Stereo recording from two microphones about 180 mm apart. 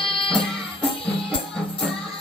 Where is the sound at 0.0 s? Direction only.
30° left (ahead or behind).